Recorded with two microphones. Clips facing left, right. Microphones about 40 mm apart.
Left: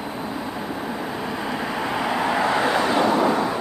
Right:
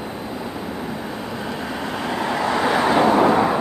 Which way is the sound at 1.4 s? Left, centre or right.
Centre.